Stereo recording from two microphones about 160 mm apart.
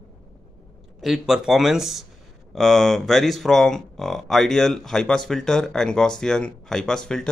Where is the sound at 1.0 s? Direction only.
Centre (ahead or behind).